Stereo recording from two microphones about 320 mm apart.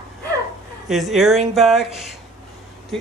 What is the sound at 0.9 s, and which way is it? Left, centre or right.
Speech, centre.